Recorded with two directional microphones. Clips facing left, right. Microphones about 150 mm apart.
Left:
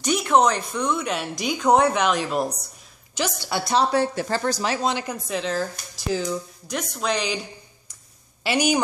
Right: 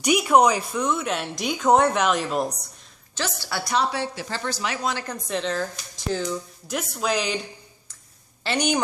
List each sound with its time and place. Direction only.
0.0 s speech: 10° right (ahead or behind)
3.2 s a woman's voice: 15° left (ahead or behind)
3.7 s speech: 45° left (ahead or behind)
4.8 s speech: 15° left (ahead or behind)
5.1 s speech: 5° left (ahead or behind)
8.5 s speech: 5° left (ahead or behind)